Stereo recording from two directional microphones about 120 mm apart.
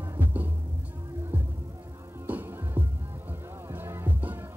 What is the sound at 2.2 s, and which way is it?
Music, 15° right (ahead or behind).